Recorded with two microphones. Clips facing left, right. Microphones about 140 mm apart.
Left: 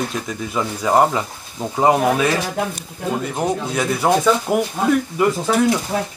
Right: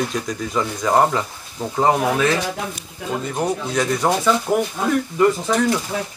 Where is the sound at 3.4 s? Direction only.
10° left (ahead or behind).